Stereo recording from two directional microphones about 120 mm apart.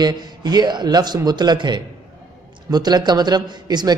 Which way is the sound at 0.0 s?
35° right (ahead or behind).